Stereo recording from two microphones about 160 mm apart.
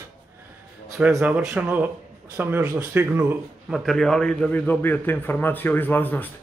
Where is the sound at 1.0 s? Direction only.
10° right (ahead or behind).